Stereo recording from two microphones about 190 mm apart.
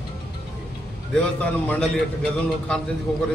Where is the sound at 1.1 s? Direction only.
5° left (ahead or behind).